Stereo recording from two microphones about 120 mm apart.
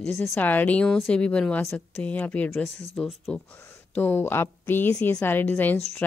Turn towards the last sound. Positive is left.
turn(degrees=15)  # may be behind; listen again after turning